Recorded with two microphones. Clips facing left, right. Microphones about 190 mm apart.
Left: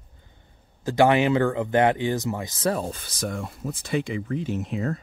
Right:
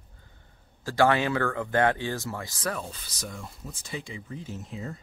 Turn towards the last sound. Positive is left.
turn(degrees=75)  # may be behind; listen again after turning